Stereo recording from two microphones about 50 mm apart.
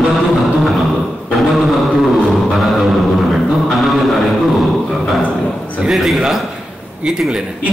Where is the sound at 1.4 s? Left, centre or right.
Centre.